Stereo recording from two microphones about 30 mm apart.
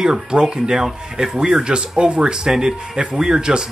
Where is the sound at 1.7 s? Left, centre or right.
Right.